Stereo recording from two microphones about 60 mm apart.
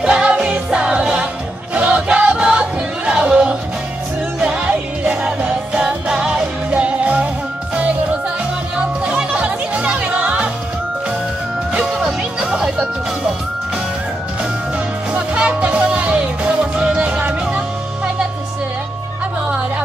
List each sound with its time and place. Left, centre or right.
0.0 s music: centre
8.7 s music: centre
11.7 s music: centre
15.1 s music: centre